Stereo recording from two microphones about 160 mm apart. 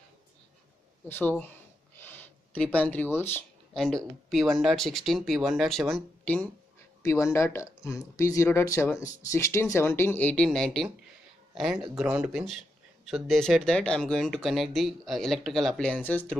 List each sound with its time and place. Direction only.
1.0 s speech: 15° left (ahead or behind)
2.0 s a sound: 10° left (ahead or behind)
3.7 s speech: 5° left (ahead or behind)
7.0 s speech: 20° left (ahead or behind)